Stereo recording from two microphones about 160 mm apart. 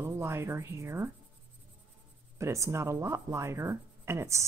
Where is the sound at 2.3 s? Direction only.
20° right (ahead or behind).